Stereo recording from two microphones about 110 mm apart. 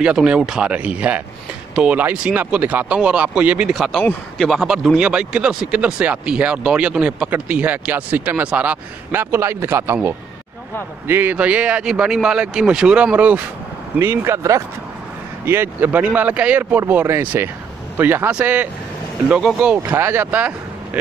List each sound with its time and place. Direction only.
0.0 s speech: 10° right (ahead or behind)
11.1 s speech: 20° right (ahead or behind)
19.8 s speech: 20° right (ahead or behind)